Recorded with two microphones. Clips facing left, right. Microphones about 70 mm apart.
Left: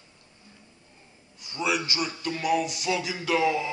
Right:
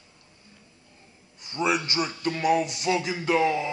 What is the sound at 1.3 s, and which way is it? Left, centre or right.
A man's voice, right.